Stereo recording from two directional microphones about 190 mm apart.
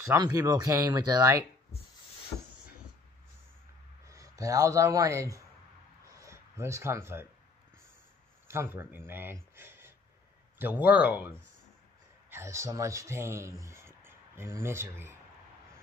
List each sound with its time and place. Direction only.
0.1 s speech: 15° right (ahead or behind)
4.1 s speech: 15° right (ahead or behind)
6.0 s a sound: 15° right (ahead or behind)
8.5 s speech: 15° right (ahead or behind)